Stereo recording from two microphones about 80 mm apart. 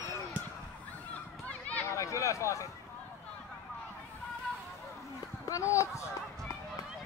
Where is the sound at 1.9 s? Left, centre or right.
Left.